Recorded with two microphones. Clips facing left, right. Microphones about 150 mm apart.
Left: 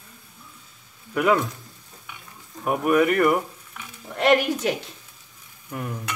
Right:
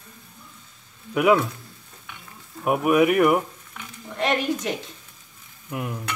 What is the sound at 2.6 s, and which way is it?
Speech, 10° right (ahead or behind).